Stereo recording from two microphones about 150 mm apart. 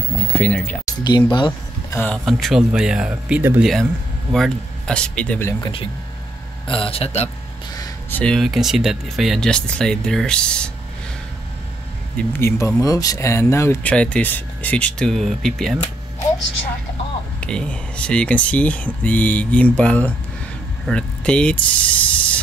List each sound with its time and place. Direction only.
0.3 s speech: 5° left (ahead or behind)
1.0 s speech: 30° left (ahead or behind)
2.2 s speech: centre (ahead or behind)
4.3 s speech: 5° left (ahead or behind)
5.5 s speech: 35° left (ahead or behind)
8.1 s speech: 5° left (ahead or behind)
12.2 s speech: 15° left (ahead or behind)
17.4 s speech: 5° left (ahead or behind)